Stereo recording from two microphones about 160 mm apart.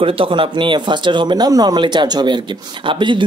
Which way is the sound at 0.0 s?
35° right (ahead or behind).